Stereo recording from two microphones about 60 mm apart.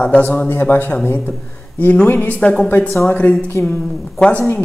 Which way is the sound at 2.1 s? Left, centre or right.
Left.